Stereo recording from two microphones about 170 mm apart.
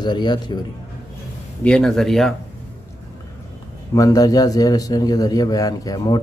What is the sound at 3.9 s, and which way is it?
A man's voice, 20° left (ahead or behind).